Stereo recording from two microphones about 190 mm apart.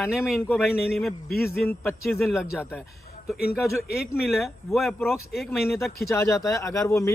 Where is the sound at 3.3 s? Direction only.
55° left (ahead or behind).